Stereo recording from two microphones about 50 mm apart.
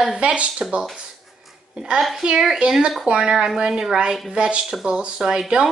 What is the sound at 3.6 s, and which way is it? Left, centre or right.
A woman's voice, centre.